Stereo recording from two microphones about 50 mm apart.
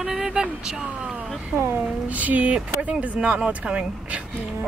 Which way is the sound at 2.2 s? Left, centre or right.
Right.